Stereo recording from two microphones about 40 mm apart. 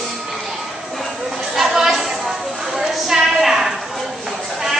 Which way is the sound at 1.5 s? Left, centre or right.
Centre.